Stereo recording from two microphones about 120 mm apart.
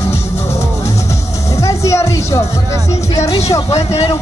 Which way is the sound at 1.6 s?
25° left (ahead or behind).